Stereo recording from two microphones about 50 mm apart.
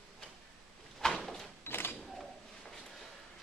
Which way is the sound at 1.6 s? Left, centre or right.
Left.